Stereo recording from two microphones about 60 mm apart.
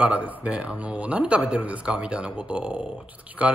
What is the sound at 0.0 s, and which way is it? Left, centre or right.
A man's voice, right.